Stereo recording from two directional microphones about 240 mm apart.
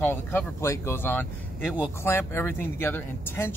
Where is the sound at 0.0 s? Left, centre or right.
Centre.